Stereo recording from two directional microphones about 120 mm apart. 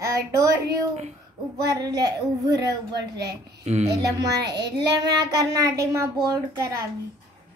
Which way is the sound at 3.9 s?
35° right (ahead or behind).